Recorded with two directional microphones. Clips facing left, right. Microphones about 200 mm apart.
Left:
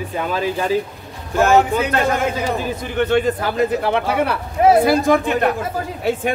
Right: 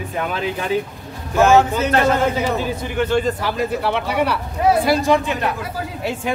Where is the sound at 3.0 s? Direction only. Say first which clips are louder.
Left 2 dB; 60° left (ahead or behind).